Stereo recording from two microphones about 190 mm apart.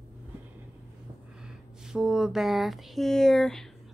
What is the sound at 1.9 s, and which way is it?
A woman's voice, centre (ahead or behind).